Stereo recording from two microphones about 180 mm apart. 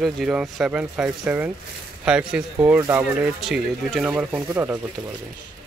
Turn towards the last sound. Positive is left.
turn(degrees=-10)  # may be behind; listen again after turning